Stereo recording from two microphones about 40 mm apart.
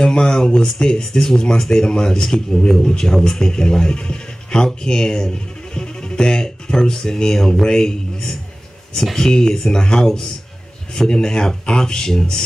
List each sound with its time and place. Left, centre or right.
0.0 s speech: centre